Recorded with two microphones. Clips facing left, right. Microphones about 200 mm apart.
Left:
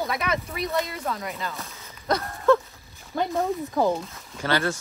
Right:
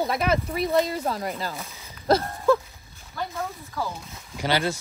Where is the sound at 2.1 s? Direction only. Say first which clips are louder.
Right 5 dB; 30° right (ahead or behind).